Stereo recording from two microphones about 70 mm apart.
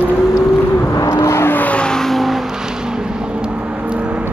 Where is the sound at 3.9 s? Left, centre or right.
Centre.